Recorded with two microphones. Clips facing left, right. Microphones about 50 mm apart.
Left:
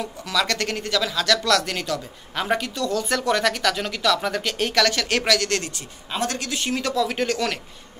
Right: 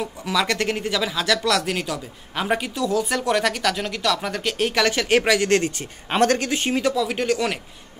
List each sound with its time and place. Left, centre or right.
0.0 s speech: centre
5.8 s speech: right
6.8 s speech: centre